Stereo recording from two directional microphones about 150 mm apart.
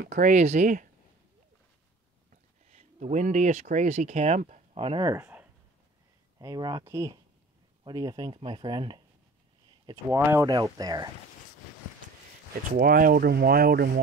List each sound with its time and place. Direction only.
0.1 s speech: 50° right (ahead or behind)
2.7 s speech: 55° right (ahead or behind)
4.7 s speech: 35° right (ahead or behind)
5.0 s speech: 15° right (ahead or behind)
6.4 s speech: 25° right (ahead or behind)
10.0 s speech: 15° right (ahead or behind)
12.7 s speech: 75° right (ahead or behind); by 13.9 s 90° right